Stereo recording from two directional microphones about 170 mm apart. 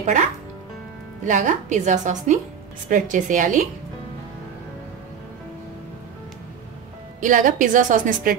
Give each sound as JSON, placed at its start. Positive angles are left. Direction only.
{"t": 1.2, "sound": "a woman's voice", "side_deg": -50}
{"t": 7.2, "sound": "a woman's voice", "side_deg": -50}